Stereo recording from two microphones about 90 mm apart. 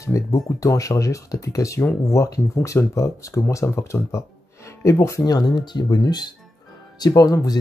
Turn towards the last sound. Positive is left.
turn(degrees=45)  # may be behind; listen again after turning